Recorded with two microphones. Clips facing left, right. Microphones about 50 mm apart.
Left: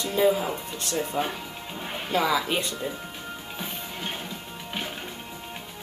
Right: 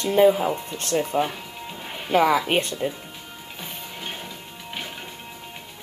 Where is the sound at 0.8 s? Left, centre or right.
Right.